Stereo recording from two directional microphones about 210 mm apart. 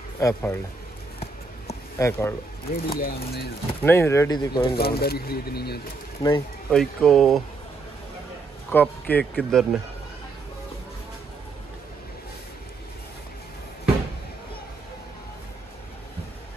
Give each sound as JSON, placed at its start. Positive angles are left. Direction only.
{"t": 0.2, "sound": "speech", "side_deg": 15}
{"t": 2.0, "sound": "speech", "side_deg": 10}
{"t": 2.7, "sound": "speech", "side_deg": 45}
{"t": 3.8, "sound": "speech", "side_deg": 10}
{"t": 4.7, "sound": "speech", "side_deg": 45}
{"t": 6.7, "sound": "speech", "side_deg": 0}
{"t": 8.7, "sound": "speech", "side_deg": 10}